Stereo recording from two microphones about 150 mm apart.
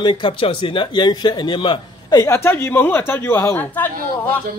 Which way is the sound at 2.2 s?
15° left (ahead or behind).